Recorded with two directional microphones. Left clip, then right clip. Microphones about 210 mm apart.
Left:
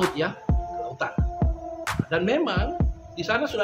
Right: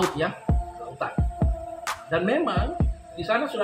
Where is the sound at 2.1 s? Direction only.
20° left (ahead or behind).